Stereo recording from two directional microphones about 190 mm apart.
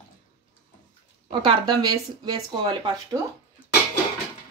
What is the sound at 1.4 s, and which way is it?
A woman's voice, 20° right (ahead or behind).